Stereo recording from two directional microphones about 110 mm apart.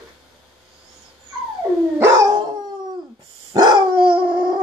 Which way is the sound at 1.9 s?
25° right (ahead or behind).